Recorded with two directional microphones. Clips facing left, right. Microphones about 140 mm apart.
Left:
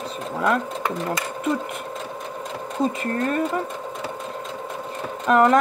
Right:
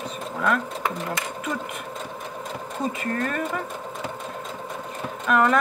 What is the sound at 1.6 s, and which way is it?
Sewing machine, centre (ahead or behind).